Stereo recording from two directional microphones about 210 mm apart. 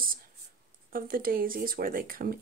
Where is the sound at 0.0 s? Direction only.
45° right (ahead or behind).